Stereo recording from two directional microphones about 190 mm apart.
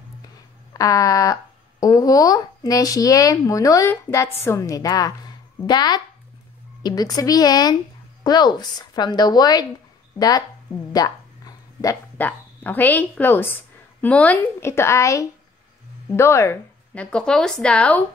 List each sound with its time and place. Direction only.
0.7 s a woman's voice: 20° left (ahead or behind)